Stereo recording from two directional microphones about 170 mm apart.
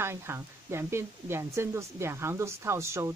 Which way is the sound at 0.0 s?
15° right (ahead or behind).